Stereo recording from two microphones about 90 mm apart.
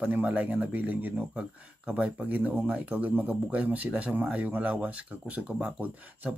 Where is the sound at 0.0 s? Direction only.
20° right (ahead or behind).